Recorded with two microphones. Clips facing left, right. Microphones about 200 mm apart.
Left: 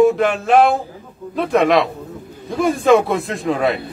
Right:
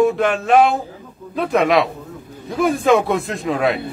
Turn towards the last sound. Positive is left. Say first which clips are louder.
# left 1 dB
turn(degrees=0)  # may be behind; listen again after turning